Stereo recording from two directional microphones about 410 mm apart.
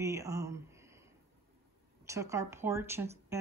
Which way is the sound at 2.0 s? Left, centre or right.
Centre.